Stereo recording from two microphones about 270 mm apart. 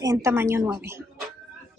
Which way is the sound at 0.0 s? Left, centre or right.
Centre.